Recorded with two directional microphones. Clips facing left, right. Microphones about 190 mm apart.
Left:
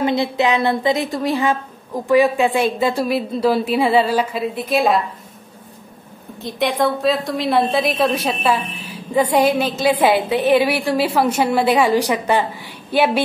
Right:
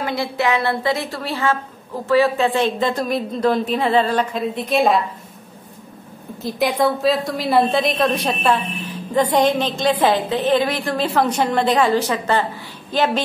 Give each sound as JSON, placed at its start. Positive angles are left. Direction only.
{"t": 0.0, "sound": "a woman's voice", "side_deg": 20}
{"t": 6.4, "sound": "a woman's voice", "side_deg": 0}